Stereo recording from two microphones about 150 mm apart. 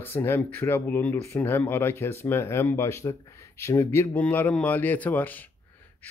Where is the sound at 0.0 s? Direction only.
15° left (ahead or behind).